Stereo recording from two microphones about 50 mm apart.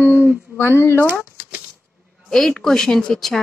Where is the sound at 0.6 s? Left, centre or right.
Left.